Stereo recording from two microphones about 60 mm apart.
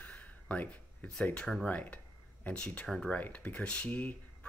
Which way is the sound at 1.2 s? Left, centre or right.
Centre.